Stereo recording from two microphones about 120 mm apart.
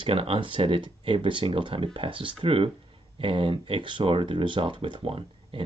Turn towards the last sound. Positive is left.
turn(degrees=-50)  # may be behind; listen again after turning